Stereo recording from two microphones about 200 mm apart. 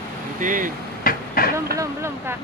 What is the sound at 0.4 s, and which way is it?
Speech, 40° right (ahead or behind).